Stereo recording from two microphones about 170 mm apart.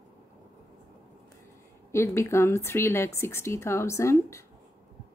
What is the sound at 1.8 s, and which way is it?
A woman's voice, 15° left (ahead or behind).